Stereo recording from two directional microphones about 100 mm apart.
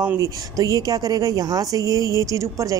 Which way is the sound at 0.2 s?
35° right (ahead or behind).